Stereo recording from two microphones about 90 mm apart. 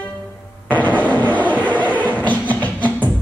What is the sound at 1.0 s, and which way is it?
Vehicle, 15° left (ahead or behind).